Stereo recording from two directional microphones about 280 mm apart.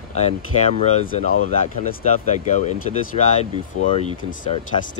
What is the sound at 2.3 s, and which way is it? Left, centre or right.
Speech, left.